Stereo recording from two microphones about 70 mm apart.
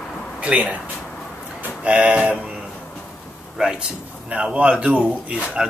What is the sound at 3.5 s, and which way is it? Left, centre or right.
Speech, centre.